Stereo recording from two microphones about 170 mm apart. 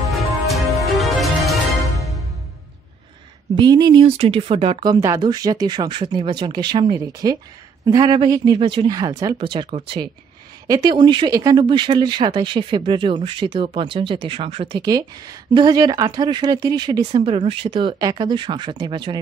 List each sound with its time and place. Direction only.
0.1 s music: centre (ahead or behind)
3.5 s speech: 25° right (ahead or behind)